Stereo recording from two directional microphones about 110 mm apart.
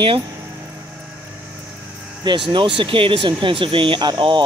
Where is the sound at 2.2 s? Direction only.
45° right (ahead or behind).